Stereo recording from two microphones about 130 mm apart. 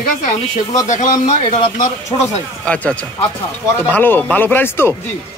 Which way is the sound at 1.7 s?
65° left (ahead or behind).